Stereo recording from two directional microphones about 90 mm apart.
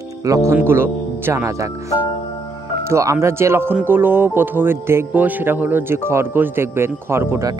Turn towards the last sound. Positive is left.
turn(degrees=-25)  # may be behind; listen again after turning